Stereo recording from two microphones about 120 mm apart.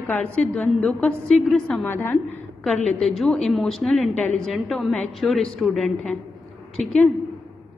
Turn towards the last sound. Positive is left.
turn(degrees=0)  # may be behind; listen again after turning